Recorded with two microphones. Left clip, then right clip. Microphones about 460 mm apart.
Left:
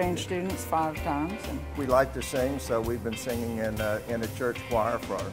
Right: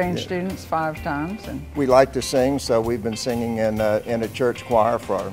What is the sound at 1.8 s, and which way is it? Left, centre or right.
Speech, right.